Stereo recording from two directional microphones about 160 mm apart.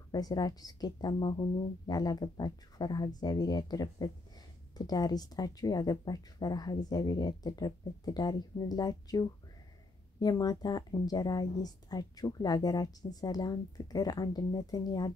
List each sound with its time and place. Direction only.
0.1 s speech: 25° left (ahead or behind)
10.2 s speech: 25° left (ahead or behind)